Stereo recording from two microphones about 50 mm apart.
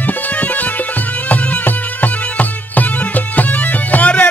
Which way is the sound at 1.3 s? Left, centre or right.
Left.